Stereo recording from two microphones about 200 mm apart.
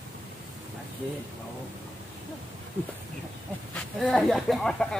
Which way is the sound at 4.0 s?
Centre (ahead or behind).